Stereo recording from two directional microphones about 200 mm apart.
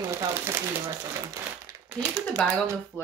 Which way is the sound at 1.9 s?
10° right (ahead or behind).